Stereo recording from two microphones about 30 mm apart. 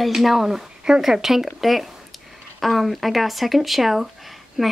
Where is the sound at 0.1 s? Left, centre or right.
Centre.